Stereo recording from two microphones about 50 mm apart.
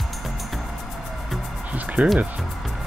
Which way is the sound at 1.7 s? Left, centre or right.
Right.